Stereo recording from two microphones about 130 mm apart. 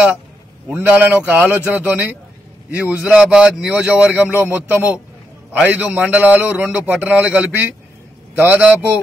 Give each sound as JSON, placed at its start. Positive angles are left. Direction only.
{"t": 0.8, "sound": "a man's voice", "side_deg": -15}